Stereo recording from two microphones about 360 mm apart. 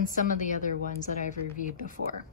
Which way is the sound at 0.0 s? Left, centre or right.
Left.